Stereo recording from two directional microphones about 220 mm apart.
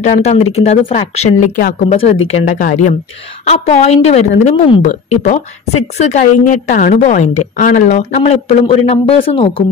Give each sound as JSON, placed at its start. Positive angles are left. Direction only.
{"t": 0.0, "sound": "a woman's voice", "side_deg": 30}